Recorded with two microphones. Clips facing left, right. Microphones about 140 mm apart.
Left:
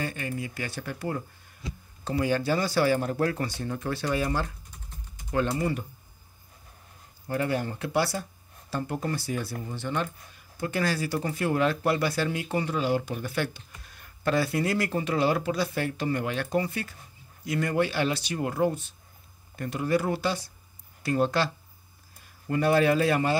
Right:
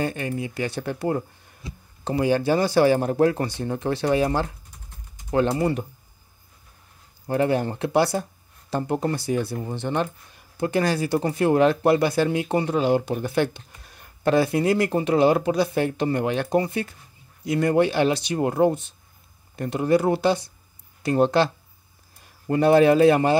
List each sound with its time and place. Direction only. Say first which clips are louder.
0.0 s speech: right 6 dB; 25° right (ahead or behind)
2.0 s speech: right 5 dB; 20° right (ahead or behind)
5.3 s speech: right 6 dB; 30° right (ahead or behind)
7.2 s speech: right 6 dB; 25° right (ahead or behind)
22.5 s speech: right 6 dB; 25° right (ahead or behind)